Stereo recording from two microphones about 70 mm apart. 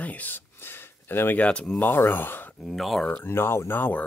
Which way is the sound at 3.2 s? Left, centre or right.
Left.